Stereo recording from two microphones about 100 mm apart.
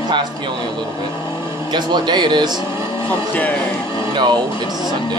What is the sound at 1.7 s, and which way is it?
Speech, 50° right (ahead or behind).